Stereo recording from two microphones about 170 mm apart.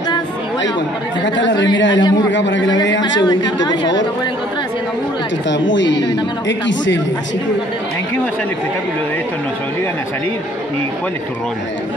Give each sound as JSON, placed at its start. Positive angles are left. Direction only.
{"t": 1.2, "sound": "a man's voice", "side_deg": 90}
{"t": 5.5, "sound": "a man's voice", "side_deg": 90}